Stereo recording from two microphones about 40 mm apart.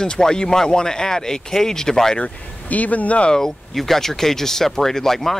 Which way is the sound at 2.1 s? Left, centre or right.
Left.